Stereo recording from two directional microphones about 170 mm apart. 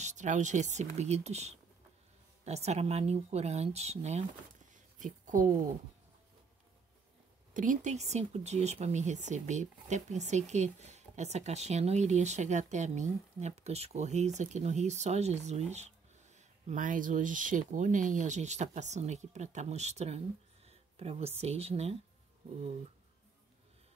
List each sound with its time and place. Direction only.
0.0 s speech: 45° right (ahead or behind)
4.7 s a sound: 50° right (ahead or behind)
7.5 s speech: 50° right (ahead or behind)